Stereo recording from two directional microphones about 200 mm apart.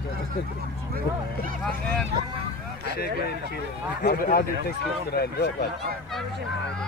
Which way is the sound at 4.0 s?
45° left (ahead or behind).